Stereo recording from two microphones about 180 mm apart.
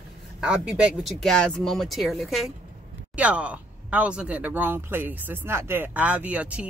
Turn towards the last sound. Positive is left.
turn(degrees=-5)  # may be behind; listen again after turning